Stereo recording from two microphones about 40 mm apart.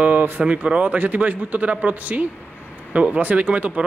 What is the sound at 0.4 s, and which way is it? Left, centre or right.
A man's voice, right.